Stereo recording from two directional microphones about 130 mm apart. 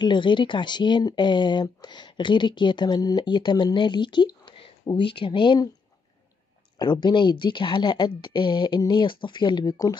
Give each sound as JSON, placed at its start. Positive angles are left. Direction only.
{"t": 0.0, "sound": "speech", "side_deg": 35}
{"t": 6.8, "sound": "speech", "side_deg": 35}